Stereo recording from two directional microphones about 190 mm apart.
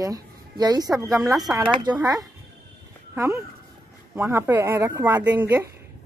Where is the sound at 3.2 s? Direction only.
15° right (ahead or behind).